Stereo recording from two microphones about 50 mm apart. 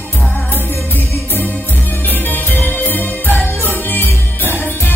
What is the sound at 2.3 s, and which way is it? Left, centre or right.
Music, left.